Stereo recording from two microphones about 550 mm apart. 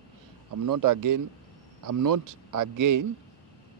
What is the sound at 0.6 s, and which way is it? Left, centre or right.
Speech, right.